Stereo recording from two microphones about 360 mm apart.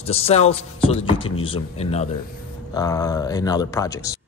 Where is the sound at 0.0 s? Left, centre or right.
Centre.